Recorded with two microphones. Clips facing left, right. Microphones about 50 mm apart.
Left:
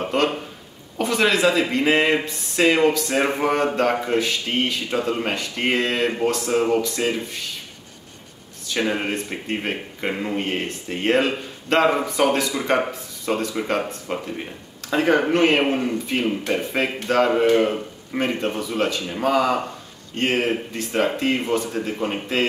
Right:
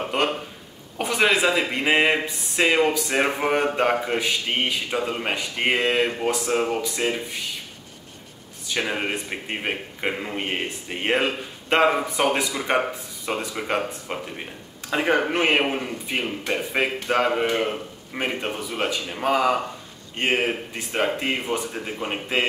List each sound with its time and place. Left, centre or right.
0.1 s a sound: centre
0.9 s speech: centre
8.7 s speech: centre
9.0 s speech: centre
18.4 s speech: centre